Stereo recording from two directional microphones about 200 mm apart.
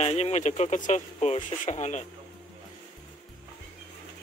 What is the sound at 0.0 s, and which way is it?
Speech, 35° left (ahead or behind).